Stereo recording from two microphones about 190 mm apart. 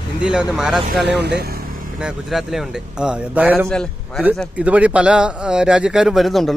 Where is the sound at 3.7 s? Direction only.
5° left (ahead or behind).